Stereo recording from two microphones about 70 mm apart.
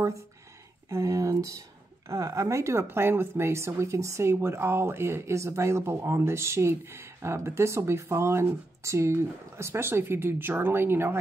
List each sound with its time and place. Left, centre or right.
0.8 s a woman's voice: right